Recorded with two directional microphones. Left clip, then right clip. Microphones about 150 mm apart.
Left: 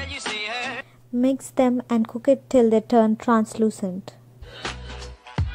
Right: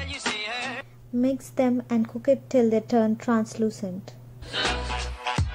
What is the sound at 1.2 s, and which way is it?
Speech, 55° left (ahead or behind).